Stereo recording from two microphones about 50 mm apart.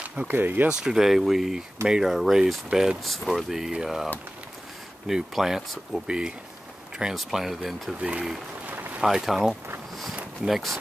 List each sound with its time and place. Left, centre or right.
0.1 s speech: right
0.4 s speech: right
0.7 s speech: centre
3.0 s speech: centre
5.3 s speech: centre
7.2 s speech: centre
8.0 s speech: right
8.6 s a sound: right
9.0 s speech: centre